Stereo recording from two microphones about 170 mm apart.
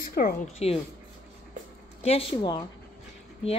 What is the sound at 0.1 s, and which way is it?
Speech, 60° left (ahead or behind).